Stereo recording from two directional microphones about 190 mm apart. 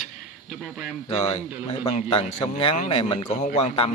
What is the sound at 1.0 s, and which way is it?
Speech, 35° left (ahead or behind).